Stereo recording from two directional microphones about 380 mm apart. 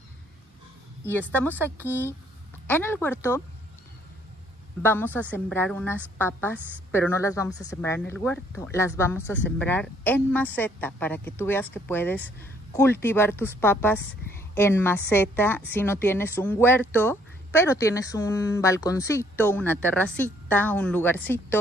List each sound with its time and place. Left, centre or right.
1.0 s speech: centre
4.8 s speech: centre